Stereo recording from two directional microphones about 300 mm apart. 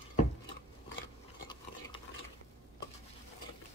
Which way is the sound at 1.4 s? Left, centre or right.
Centre.